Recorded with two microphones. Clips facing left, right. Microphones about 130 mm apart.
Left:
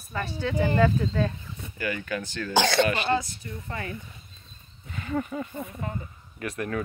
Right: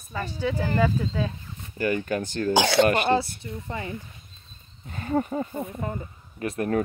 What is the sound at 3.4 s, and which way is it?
Speech, 25° right (ahead or behind).